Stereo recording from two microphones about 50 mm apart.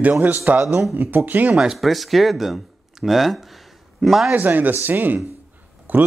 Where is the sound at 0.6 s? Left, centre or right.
Right.